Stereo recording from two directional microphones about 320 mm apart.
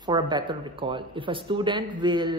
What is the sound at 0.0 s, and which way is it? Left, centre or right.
Speech, centre.